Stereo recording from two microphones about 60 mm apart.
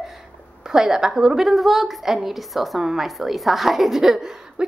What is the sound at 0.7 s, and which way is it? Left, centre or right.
A woman's voice, centre.